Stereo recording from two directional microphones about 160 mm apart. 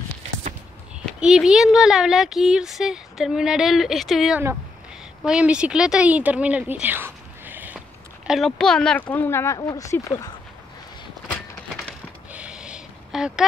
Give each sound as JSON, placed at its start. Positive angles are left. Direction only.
{"t": 1.0, "sound": "speech", "side_deg": -5}
{"t": 8.3, "sound": "speech", "side_deg": 0}
{"t": 12.3, "sound": "a sound", "side_deg": -5}